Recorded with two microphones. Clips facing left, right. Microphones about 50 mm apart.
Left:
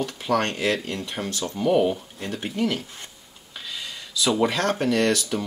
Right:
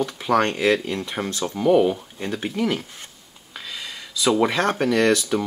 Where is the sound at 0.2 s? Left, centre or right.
Right.